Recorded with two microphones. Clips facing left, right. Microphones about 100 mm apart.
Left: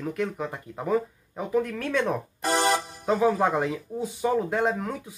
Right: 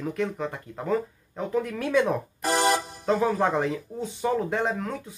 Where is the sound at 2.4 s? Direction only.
25° left (ahead or behind).